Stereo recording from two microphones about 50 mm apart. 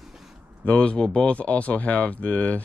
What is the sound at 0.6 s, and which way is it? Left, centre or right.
Speech, left.